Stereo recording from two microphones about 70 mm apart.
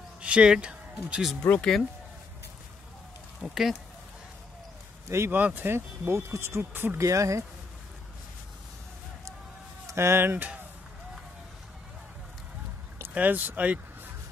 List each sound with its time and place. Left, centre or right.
0.2 s speech: centre
1.4 s speech: centre
3.3 s speech: centre
5.0 s speech: right
5.3 s speech: right
5.8 s speech: right
6.6 s speech: right
7.0 s speech: right
9.8 s speech: right
13.1 s speech: right